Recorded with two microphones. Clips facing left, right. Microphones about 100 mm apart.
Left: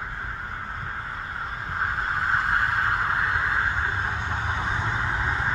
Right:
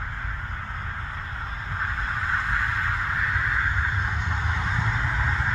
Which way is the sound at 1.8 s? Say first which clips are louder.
Left 3 dB; 40° left (ahead or behind).